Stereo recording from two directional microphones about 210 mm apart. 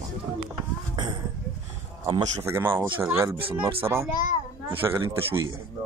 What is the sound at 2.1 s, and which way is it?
Speech, 25° right (ahead or behind).